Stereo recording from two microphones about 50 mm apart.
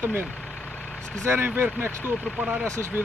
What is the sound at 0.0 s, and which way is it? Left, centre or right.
Speech, right.